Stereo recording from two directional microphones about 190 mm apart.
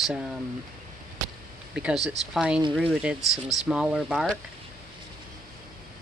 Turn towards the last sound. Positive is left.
turn(degrees=-5)  # may be behind; listen again after turning